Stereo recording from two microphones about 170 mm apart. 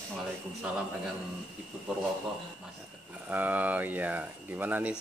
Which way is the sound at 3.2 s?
10° right (ahead or behind).